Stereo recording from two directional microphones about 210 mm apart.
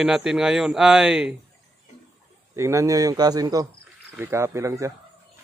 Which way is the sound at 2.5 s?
15° right (ahead or behind).